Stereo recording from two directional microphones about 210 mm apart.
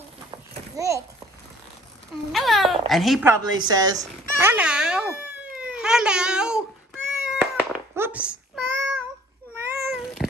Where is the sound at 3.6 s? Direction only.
15° right (ahead or behind).